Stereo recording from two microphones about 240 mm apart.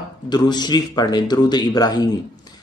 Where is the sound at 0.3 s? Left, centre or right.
Centre.